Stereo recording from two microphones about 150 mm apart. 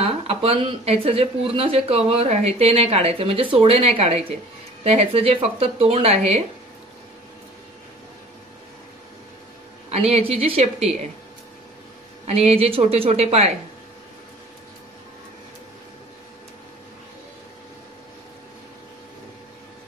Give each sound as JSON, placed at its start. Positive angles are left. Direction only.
{"t": 0.0, "sound": "speech", "side_deg": -40}
{"t": 9.8, "sound": "a woman's voice", "side_deg": -45}
{"t": 12.3, "sound": "a woman's voice", "side_deg": -45}